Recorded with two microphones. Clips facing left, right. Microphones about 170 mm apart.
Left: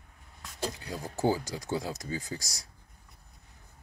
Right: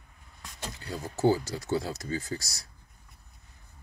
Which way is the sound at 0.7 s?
15° left (ahead or behind).